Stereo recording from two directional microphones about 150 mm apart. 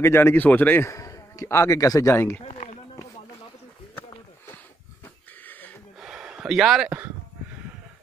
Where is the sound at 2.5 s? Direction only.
45° left (ahead or behind).